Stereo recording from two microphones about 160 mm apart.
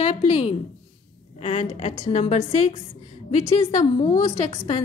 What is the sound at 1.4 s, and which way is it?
A woman's voice, 45° left (ahead or behind).